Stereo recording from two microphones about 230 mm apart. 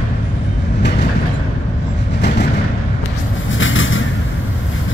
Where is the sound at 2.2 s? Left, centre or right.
Left.